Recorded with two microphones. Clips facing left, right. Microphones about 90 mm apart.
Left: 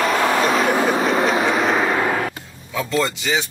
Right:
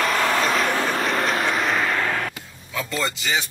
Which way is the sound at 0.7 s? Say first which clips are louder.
Left 5 dB; 15° left (ahead or behind).